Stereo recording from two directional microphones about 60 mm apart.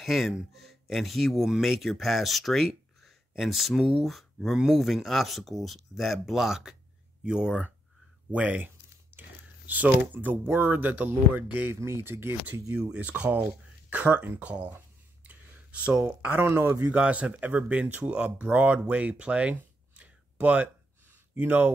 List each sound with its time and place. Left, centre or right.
0.0 s speech: centre
8.3 s a sound: right
9.8 s speech: right
11.7 s speech: right
12.9 s speech: right
15.2 s a sound: right
16.1 s speech: right
16.8 s speech: centre